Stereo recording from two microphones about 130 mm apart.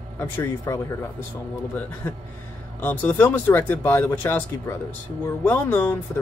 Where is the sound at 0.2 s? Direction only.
20° left (ahead or behind).